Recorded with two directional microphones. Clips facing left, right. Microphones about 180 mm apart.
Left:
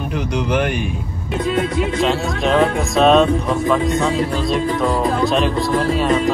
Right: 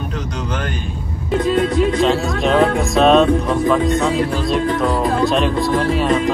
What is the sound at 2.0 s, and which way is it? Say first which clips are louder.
Speech: right 2 dB; centre (ahead or behind).